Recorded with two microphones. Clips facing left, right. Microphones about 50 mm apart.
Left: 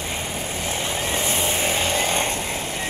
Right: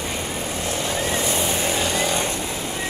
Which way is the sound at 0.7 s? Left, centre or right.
Left.